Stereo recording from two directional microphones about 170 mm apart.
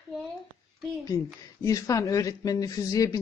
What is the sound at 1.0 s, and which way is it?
Speech, 20° left (ahead or behind).